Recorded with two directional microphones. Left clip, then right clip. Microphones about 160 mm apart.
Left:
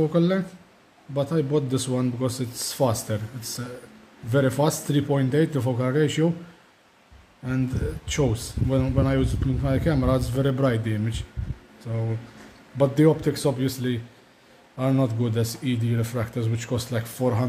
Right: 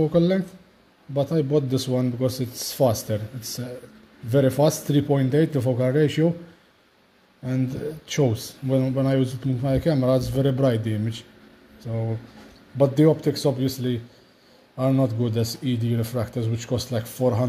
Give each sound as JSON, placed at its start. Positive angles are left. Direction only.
{"t": 0.0, "sound": "speech", "side_deg": -15}
{"t": 8.1, "sound": "speech", "side_deg": -15}